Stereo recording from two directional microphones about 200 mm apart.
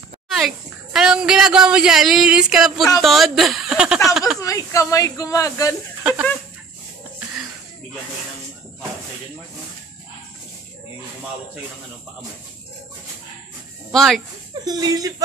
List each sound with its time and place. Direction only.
0.9 s speech: 5° right (ahead or behind)
4.4 s speech: 15° left (ahead or behind)
13.9 s speech: centre (ahead or behind)
14.5 s speech: 20° right (ahead or behind)